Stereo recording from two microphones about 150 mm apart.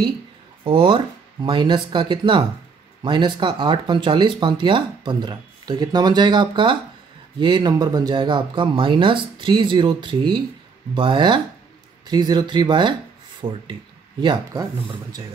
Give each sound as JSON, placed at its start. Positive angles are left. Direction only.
{"t": 0.7, "sound": "speech", "side_deg": -35}